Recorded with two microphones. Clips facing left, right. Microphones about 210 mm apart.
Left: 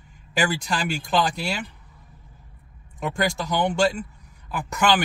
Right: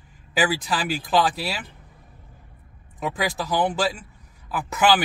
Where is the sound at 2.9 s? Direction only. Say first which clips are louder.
Left 1 dB; 5° right (ahead or behind).